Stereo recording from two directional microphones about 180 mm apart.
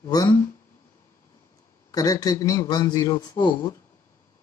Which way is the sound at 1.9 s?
20° left (ahead or behind).